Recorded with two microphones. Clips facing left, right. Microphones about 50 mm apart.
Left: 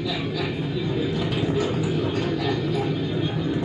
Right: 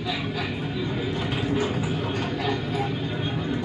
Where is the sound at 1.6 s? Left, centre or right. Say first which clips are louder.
Left 3 dB; right.